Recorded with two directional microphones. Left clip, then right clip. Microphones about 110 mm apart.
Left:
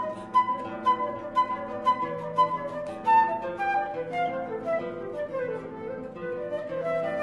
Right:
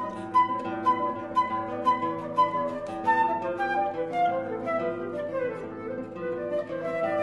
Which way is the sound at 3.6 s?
15° left (ahead or behind).